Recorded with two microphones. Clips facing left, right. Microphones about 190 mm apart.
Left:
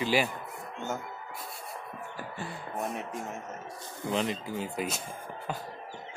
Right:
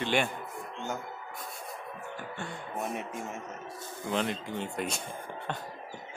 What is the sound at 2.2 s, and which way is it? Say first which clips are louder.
Speech: left 2 dB; 5° left (ahead or behind).